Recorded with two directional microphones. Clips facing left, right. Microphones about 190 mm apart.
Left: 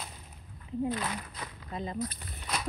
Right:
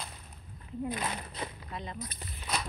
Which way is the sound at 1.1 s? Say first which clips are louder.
Right 1 dB; 25° right (ahead or behind).